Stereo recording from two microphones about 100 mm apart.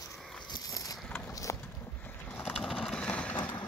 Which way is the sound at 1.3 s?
30° left (ahead or behind).